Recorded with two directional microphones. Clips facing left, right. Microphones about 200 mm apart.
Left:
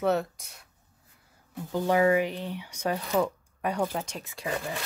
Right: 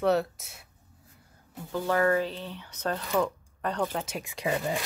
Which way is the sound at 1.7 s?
15° left (ahead or behind).